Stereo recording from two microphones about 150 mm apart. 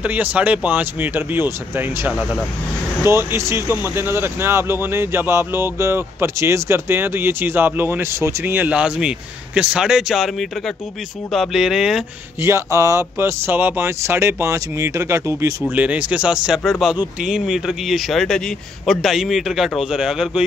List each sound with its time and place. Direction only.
0.0 s a man's voice: 10° right (ahead or behind)
11.3 s a man's voice: centre (ahead or behind)
12.4 s a man's voice: 20° right (ahead or behind)